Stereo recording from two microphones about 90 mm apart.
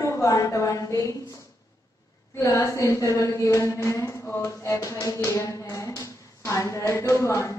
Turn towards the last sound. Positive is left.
turn(degrees=35)  # may be behind; listen again after turning